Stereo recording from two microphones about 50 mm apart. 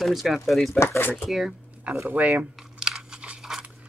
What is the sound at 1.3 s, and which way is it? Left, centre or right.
Speech, centre.